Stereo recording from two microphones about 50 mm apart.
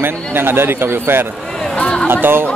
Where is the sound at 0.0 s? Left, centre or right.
Right.